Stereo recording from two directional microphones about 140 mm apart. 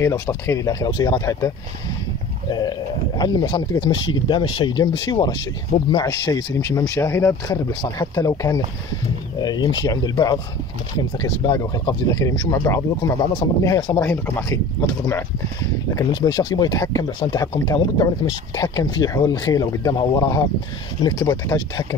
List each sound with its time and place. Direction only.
0.0 s speech: 20° left (ahead or behind)
3.2 s speech: 30° left (ahead or behind)
13.7 s speech: 35° left (ahead or behind)
13.9 s speech: 15° left (ahead or behind)